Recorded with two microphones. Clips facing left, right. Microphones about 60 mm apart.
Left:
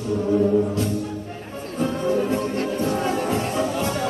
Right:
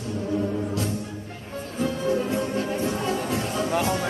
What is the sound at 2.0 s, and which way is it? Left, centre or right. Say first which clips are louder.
Music: left 3 dB; left.